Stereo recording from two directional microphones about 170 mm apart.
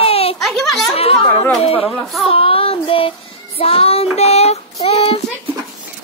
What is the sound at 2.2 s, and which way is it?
Child singing, 35° left (ahead or behind).